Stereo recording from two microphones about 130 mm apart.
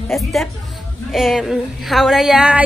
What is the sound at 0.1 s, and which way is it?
A woman's voice, centre (ahead or behind).